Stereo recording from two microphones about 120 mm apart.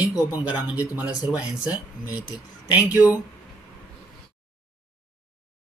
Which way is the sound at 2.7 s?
15° right (ahead or behind).